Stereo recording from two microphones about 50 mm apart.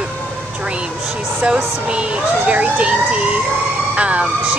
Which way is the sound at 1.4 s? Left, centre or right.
Right.